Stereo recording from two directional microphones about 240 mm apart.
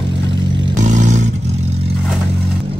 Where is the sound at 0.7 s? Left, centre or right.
Right.